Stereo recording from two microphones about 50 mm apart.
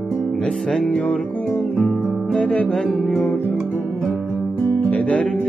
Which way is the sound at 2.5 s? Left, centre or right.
Left.